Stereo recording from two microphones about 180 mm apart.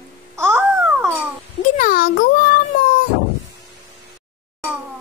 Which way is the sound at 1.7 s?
50° left (ahead or behind).